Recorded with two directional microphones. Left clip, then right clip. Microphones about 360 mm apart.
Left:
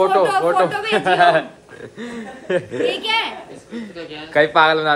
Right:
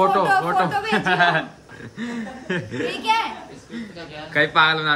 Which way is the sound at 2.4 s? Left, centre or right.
Centre.